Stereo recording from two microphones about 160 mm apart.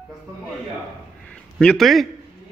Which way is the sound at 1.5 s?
Centre (ahead or behind).